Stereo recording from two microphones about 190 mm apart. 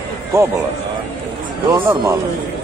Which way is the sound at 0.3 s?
15° right (ahead or behind).